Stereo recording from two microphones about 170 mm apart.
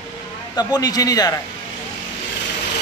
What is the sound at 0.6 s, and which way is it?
Speech, 20° left (ahead or behind).